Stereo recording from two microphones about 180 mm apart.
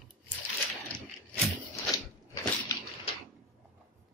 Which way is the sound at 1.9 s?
20° left (ahead or behind).